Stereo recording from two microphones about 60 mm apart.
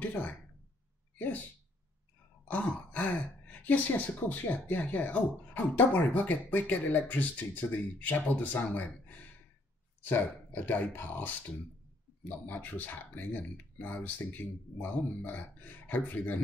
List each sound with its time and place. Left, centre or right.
0.0 s speech: left
2.5 s speech: left